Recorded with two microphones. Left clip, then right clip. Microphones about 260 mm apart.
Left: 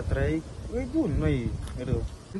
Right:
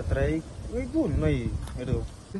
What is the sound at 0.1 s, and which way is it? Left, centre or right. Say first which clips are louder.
A man's voice: right 1 dB; centre.